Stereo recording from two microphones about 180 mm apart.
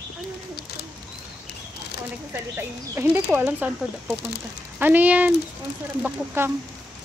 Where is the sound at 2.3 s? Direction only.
10° right (ahead or behind).